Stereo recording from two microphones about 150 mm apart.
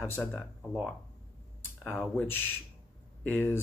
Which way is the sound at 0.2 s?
5° left (ahead or behind).